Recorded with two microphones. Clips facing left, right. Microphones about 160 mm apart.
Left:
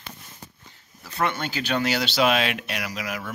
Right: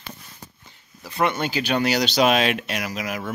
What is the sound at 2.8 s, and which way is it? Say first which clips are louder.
Speech: right 3 dB; 25° right (ahead or behind).